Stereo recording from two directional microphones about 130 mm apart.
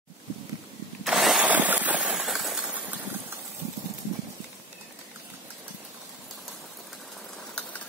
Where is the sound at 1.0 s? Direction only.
Centre (ahead or behind).